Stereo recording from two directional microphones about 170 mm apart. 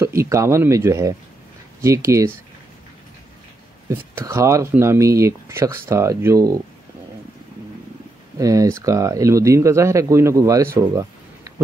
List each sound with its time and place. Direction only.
0.0 s speech: 15° right (ahead or behind)
3.9 s speech: 15° right (ahead or behind)
8.4 s speech: 20° right (ahead or behind)
11.5 s a sound: 20° right (ahead or behind)